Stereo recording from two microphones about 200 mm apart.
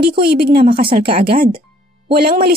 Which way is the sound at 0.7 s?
25° right (ahead or behind).